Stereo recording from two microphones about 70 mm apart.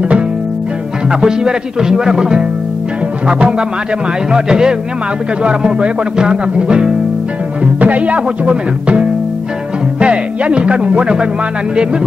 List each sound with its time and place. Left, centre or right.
1.2 s music: centre